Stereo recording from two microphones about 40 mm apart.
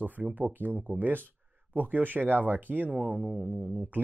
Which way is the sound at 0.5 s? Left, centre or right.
Right.